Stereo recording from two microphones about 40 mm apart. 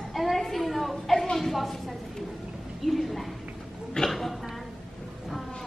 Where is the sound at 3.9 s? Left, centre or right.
Centre.